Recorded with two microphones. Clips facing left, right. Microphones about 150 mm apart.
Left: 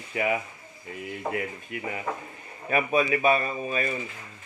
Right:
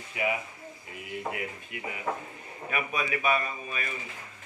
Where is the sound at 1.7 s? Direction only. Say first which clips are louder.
Left 4 dB; 45° left (ahead or behind).